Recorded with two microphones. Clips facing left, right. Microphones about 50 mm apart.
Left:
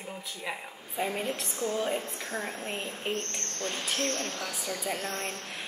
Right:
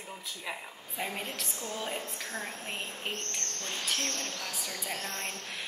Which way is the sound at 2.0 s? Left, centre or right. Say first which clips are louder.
Left 3 dB; left.